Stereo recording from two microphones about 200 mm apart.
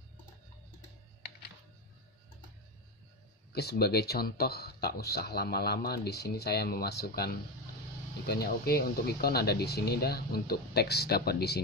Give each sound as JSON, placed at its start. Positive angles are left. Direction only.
{"t": 3.5, "sound": "speech", "side_deg": 50}